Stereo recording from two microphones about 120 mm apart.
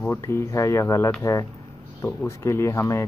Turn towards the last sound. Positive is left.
turn(degrees=25)  # may be behind; listen again after turning